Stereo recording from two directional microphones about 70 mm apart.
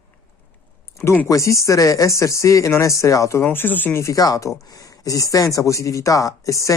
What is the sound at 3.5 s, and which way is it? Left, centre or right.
Speech, left.